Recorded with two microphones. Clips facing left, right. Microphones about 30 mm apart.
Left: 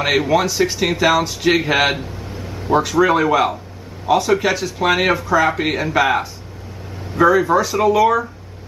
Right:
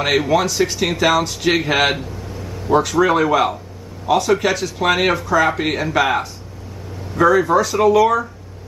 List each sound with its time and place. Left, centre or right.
0.0 s speech: centre
2.3 s a sound: centre
2.7 s speech: centre